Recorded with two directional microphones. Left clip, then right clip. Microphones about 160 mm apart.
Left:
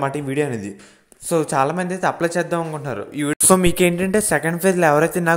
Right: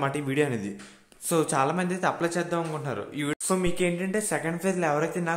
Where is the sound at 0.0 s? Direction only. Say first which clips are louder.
Left 5 dB; 25° left (ahead or behind).